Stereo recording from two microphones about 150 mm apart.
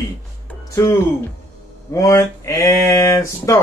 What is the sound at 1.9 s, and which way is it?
Speech, 20° left (ahead or behind).